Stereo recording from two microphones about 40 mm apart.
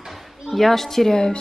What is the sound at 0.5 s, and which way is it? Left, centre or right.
Speech, centre.